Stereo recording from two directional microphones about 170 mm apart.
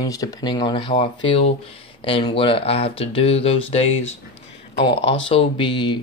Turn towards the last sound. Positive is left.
turn(degrees=25)  # may be behind; listen again after turning